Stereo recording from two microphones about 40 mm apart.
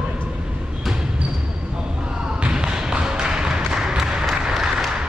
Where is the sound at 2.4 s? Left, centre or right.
Right.